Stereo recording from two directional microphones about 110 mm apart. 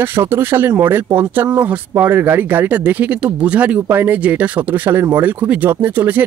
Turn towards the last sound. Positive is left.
turn(degrees=-15)  # may be behind; listen again after turning